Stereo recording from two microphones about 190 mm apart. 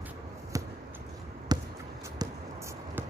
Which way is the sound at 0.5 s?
15° right (ahead or behind).